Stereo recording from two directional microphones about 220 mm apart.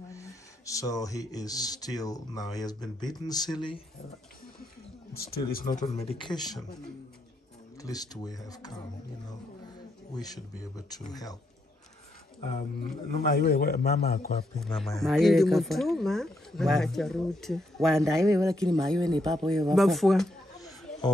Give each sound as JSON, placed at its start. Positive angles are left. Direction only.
{"t": 0.1, "sound": "speech", "side_deg": 15}
{"t": 5.1, "sound": "speech", "side_deg": 45}
{"t": 5.9, "sound": "speech", "side_deg": 25}
{"t": 7.8, "sound": "speech", "side_deg": 15}
{"t": 10.1, "sound": "speech", "side_deg": 15}
{"t": 12.4, "sound": "mantra", "side_deg": 30}
{"t": 13.2, "sound": "a man's voice", "side_deg": 45}
{"t": 14.6, "sound": "speech", "side_deg": 0}
{"t": 18.3, "sound": "speech", "side_deg": -15}
{"t": 18.9, "sound": "speech", "side_deg": 5}
{"t": 20.5, "sound": "snake", "side_deg": 15}